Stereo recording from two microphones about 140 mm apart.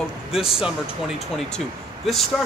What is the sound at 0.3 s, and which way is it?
A man's voice, 5° right (ahead or behind).